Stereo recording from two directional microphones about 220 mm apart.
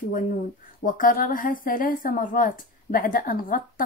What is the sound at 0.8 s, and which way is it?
A woman's voice, 40° left (ahead or behind).